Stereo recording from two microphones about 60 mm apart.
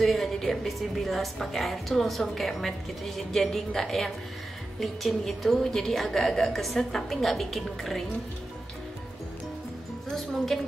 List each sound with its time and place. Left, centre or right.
0.0 s a woman's voice: centre
10.1 s a woman's voice: centre